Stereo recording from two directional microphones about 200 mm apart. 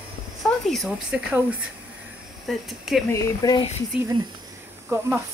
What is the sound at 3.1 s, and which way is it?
Speech, 20° left (ahead or behind).